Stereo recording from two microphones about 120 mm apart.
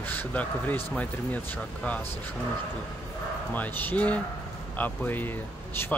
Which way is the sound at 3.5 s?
15° left (ahead or behind).